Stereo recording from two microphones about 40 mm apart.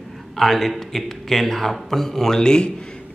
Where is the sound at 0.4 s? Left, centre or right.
Centre.